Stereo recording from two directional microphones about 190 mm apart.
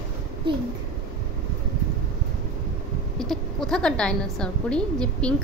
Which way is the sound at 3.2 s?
5° left (ahead or behind).